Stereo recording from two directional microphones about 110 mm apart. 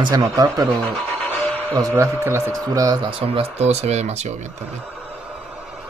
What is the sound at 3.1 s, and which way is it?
Speech, 55° right (ahead or behind).